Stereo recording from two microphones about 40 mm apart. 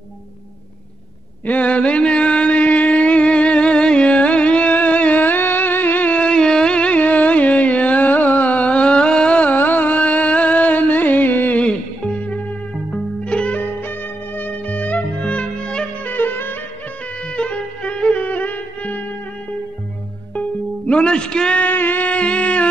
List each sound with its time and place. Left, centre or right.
1.4 s mantra: left
5.2 s music: left
6.1 s a sound: left
7.0 s carnatic music: left
9.4 s music: left
11.5 s music: left
13.6 s music: left
14.7 s music: left
16.1 s music: left
17.4 s music: left
20.3 s music: left
21.5 s a sound: left
22.1 s music: left